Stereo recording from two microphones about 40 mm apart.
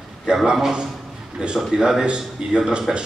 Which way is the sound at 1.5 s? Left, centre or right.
Centre.